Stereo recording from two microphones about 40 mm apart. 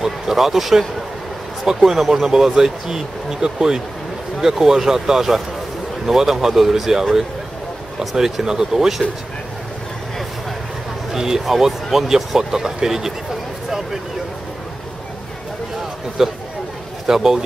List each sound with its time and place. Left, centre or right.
0.0 s speech: centre
11.1 s speech: centre
16.2 s speech: centre